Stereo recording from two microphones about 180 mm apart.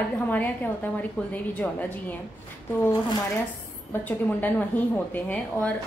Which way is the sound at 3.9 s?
10° left (ahead or behind).